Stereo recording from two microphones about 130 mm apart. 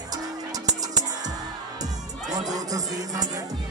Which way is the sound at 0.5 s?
30° right (ahead or behind).